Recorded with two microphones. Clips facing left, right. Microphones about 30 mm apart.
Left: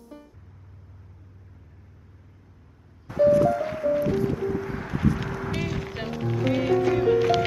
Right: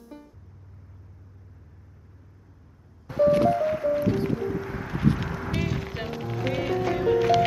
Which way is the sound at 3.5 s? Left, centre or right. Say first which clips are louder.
Even; centre.